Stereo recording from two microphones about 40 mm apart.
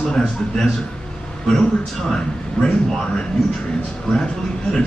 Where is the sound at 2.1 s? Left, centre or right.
Left.